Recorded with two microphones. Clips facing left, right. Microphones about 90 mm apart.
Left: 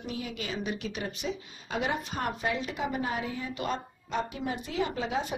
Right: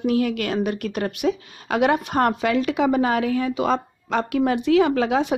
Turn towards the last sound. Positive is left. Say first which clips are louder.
# right 11 dB
turn(degrees=-75)  # may be behind; listen again after turning